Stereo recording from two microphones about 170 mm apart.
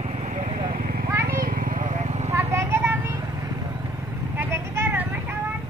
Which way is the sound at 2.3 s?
15° right (ahead or behind).